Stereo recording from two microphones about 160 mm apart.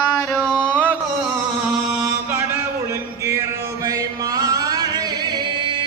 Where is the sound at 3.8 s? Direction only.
20° right (ahead or behind).